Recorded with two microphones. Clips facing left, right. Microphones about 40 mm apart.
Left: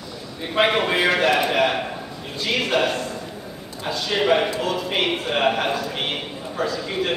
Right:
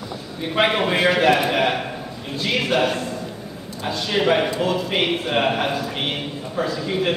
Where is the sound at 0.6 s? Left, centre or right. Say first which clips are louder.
Even; centre.